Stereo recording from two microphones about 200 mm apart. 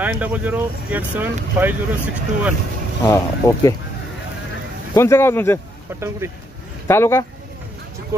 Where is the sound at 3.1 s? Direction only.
15° left (ahead or behind).